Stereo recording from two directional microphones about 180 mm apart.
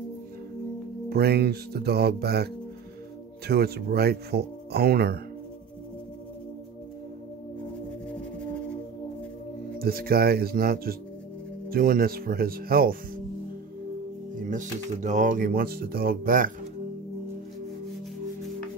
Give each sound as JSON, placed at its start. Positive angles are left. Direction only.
{"t": 1.1, "sound": "speech", "side_deg": -60}
{"t": 9.8, "sound": "speech", "side_deg": -55}
{"t": 14.5, "sound": "speech", "side_deg": -45}